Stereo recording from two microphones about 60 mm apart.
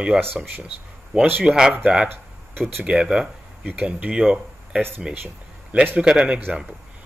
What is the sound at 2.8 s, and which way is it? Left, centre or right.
Speech, centre.